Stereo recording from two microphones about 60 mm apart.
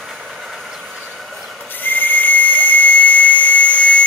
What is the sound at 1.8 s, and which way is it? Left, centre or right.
Whistle, left.